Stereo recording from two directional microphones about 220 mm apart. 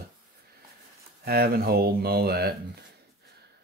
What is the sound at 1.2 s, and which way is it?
Speech, 45° right (ahead or behind).